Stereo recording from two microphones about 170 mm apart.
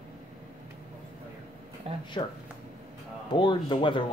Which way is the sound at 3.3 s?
30° left (ahead or behind).